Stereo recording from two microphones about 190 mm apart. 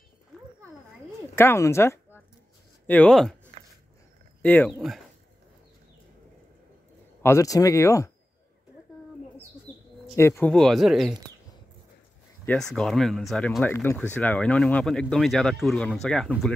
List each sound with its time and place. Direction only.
1.3 s speech: 15° left (ahead or behind)
4.4 s speech: 10° left (ahead or behind)
7.2 s speech: 15° left (ahead or behind)
9.7 s bird: 10° left (ahead or behind)
10.1 s speech: 15° left (ahead or behind)
12.4 s speech: 5° left (ahead or behind)